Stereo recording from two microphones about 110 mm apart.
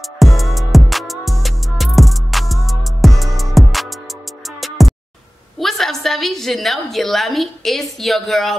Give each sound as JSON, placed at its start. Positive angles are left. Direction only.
{"t": 0.2, "sound": "music", "side_deg": 0}
{"t": 5.6, "sound": "a woman's voice", "side_deg": 0}